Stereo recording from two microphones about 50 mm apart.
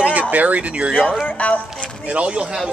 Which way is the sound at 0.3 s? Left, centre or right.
Right.